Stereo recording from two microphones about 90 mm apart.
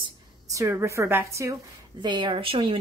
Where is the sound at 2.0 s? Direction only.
65° right (ahead or behind); by 2.8 s 90° right.